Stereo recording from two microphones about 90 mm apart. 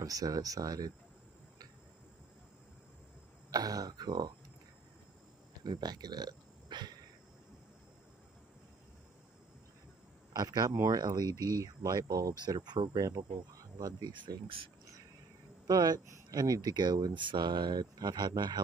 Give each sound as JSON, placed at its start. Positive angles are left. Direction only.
{"t": 0.0, "sound": "speech", "side_deg": -40}
{"t": 3.4, "sound": "speech", "side_deg": -45}
{"t": 5.6, "sound": "speech", "side_deg": -50}
{"t": 10.3, "sound": "speech", "side_deg": -45}
{"t": 13.6, "sound": "a sound", "side_deg": -45}
{"t": 15.6, "sound": "speech", "side_deg": -45}